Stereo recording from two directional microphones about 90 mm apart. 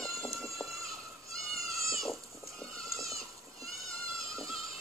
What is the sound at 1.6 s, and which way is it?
Goat, 35° right (ahead or behind).